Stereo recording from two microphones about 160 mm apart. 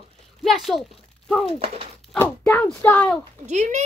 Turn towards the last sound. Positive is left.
turn(degrees=-45)  # may be behind; listen again after turning